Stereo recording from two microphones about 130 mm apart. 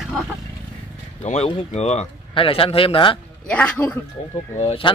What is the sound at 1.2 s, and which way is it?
Speech, 60° left (ahead or behind).